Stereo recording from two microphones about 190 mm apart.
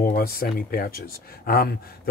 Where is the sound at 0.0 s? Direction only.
50° left (ahead or behind).